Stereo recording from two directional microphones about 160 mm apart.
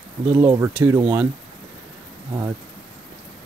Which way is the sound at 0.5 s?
10° right (ahead or behind).